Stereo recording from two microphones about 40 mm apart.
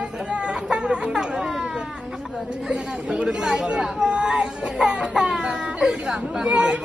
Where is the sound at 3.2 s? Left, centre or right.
Centre.